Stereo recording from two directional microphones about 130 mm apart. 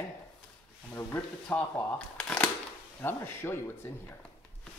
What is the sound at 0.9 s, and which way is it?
Speech, 15° left (ahead or behind).